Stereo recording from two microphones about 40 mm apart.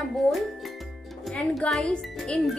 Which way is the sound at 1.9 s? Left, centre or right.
Left.